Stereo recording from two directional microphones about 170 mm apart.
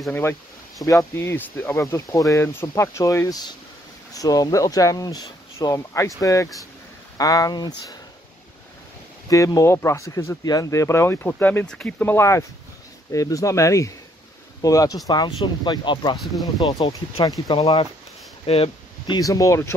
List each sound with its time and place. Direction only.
0.1 s speech: 15° left (ahead or behind)
9.3 s speech: 20° left (ahead or behind)
16.2 s speech: centre (ahead or behind)
16.6 s speech: 25° left (ahead or behind)
18.4 s a sound: 35° left (ahead or behind)
19.1 s speech: 20° left (ahead or behind)